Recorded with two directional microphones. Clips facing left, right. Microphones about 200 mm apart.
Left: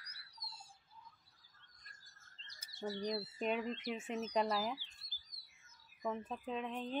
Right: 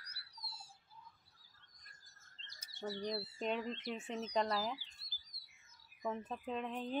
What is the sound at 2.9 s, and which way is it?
Speech, 30° right (ahead or behind).